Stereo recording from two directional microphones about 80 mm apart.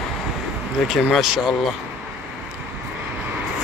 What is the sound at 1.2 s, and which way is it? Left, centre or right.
Speech, centre.